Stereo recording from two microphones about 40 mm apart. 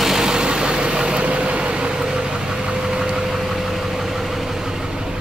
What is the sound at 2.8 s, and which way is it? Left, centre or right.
Vehicle, centre.